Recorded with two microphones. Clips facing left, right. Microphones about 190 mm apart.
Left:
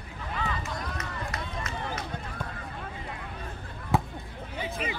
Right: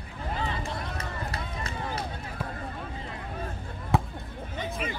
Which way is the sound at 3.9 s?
Centre (ahead or behind).